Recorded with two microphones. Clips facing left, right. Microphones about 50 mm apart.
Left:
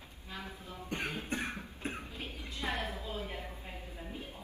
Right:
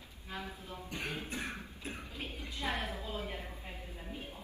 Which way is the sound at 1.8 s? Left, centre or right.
Left.